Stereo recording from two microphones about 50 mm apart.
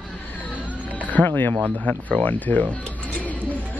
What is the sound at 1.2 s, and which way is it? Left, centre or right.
Speech, left.